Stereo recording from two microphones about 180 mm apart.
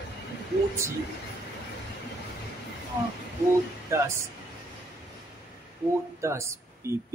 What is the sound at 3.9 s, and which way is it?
Speech, 15° right (ahead or behind).